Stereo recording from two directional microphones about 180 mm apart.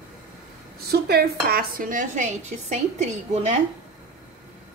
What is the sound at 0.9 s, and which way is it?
Speech, 60° right (ahead or behind).